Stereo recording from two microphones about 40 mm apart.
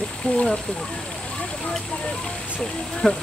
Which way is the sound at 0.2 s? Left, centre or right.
Left.